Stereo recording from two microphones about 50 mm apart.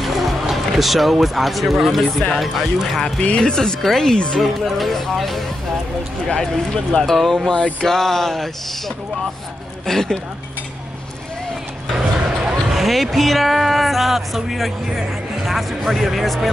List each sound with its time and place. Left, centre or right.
0.0 s speech: centre
3.2 s speech: centre
12.7 s speech: centre